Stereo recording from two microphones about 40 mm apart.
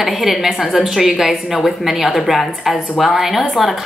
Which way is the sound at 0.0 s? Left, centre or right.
Centre.